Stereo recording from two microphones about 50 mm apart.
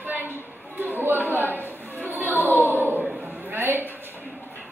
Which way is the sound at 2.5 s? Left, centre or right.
Left.